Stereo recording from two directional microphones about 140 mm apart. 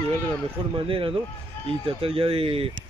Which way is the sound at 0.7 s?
40° right (ahead or behind).